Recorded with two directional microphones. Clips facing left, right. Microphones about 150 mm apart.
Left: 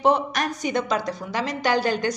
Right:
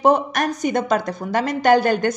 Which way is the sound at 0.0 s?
45° right (ahead or behind).